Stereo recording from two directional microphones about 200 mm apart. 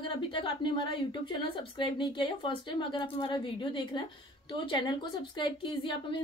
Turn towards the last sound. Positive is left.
turn(degrees=25)  # may be behind; listen again after turning